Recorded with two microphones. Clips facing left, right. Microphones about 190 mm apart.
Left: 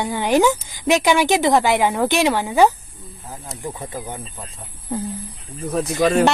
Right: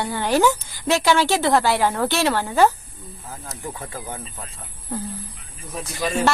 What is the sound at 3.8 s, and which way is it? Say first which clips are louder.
Speech: left 3 dB; 15° left (ahead or behind).